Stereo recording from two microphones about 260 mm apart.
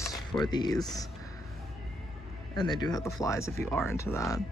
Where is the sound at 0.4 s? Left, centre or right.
Centre.